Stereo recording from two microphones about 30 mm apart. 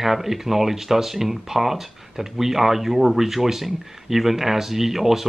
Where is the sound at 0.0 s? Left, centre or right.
Centre.